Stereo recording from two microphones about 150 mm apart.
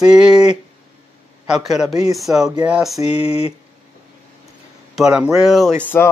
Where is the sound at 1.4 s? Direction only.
5° right (ahead or behind).